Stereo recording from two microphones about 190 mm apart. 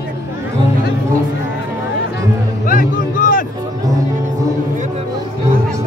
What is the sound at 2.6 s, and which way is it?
Music, 45° left (ahead or behind).